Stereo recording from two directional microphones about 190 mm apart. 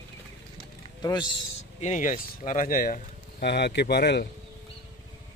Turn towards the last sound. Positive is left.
turn(degrees=60)  # may be behind; listen again after turning